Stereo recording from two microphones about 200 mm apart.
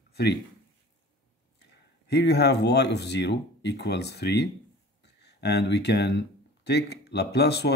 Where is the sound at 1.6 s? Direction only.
55° left (ahead or behind).